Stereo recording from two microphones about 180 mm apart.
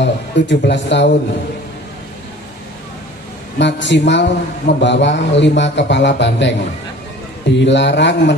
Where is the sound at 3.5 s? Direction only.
80° left.